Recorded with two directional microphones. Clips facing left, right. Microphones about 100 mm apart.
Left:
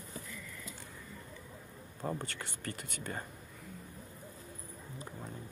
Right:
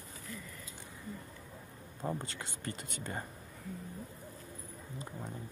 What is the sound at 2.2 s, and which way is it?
Speech, 20° right (ahead or behind).